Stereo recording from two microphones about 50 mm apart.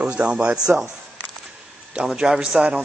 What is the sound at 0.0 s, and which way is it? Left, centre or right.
Speech, right.